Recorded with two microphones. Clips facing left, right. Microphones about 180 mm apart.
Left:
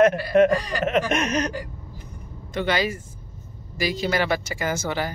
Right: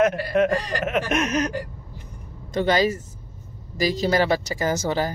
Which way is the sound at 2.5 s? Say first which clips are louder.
Right 4 dB; 40° right (ahead or behind).